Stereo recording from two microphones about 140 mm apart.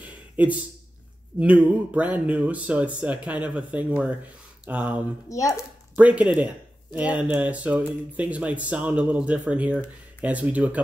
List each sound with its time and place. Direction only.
0.0 s a sound: 10° right (ahead or behind)
1.4 s speech: 10° right (ahead or behind)
5.3 s speech: 20° left (ahead or behind)
5.9 s speech: 10° right (ahead or behind)